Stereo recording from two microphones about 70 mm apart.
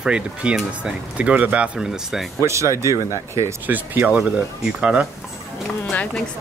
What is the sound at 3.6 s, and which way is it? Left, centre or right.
Speech, right.